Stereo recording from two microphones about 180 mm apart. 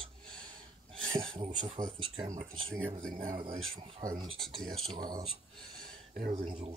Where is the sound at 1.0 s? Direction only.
30° right (ahead or behind).